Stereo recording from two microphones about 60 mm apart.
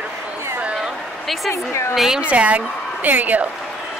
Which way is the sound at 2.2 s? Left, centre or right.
Right.